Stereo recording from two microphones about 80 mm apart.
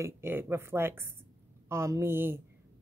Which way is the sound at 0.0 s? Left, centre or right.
Right.